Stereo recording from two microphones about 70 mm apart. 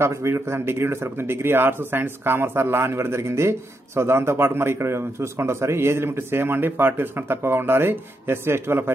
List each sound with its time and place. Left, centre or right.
0.0 s speech: right